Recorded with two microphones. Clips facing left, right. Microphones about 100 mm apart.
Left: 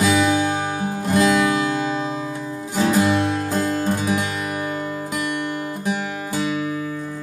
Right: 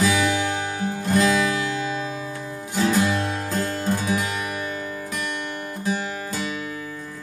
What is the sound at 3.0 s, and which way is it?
Music, 20° left (ahead or behind).